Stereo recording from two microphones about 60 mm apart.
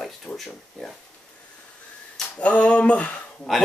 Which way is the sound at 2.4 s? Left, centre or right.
Left.